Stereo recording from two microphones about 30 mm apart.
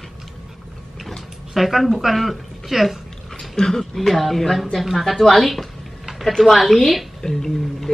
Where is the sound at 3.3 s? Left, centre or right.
Centre.